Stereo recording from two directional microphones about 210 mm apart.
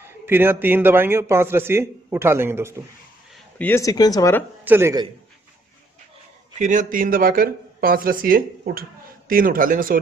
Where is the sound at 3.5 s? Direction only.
10° left (ahead or behind).